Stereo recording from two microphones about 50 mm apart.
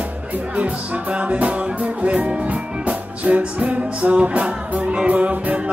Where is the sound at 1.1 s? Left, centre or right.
Right.